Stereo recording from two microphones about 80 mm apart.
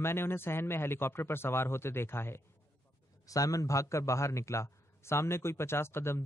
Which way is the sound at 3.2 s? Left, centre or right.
Left.